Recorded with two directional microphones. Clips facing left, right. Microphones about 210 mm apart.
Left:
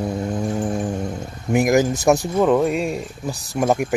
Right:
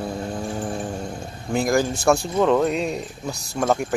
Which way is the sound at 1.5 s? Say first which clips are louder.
Left 4 dB; 20° left (ahead or behind).